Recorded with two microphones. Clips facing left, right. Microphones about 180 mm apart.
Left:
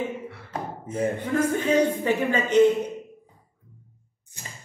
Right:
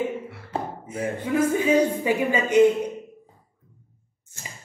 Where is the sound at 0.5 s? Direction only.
30° right (ahead or behind).